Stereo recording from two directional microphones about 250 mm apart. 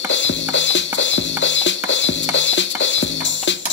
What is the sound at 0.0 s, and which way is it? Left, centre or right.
Music, left.